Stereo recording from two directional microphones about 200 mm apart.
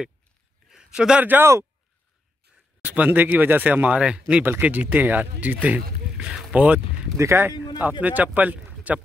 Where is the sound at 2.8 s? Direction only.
10° right (ahead or behind).